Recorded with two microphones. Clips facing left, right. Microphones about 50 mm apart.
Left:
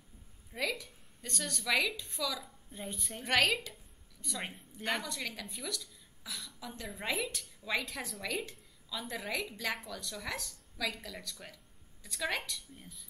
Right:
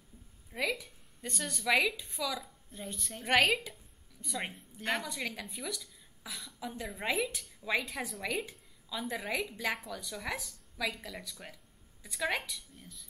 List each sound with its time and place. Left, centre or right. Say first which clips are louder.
0.5 s a woman's voice: right 2 dB; centre
2.4 s a woman's voice: even; centre
3.3 s speech: right 2 dB; centre
4.5 s a woman's voice: even; centre
4.8 s a woman's voice: right 1 dB; centre
12.7 s speech: even; centre